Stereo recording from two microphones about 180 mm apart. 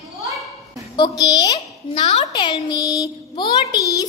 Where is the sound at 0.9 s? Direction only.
25° left (ahead or behind).